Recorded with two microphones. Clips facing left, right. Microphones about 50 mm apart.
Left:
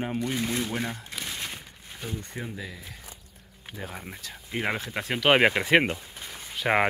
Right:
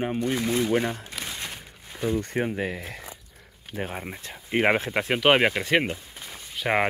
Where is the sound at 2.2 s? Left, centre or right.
Right.